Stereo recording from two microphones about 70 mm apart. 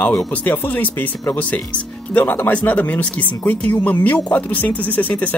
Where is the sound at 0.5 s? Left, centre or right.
Left.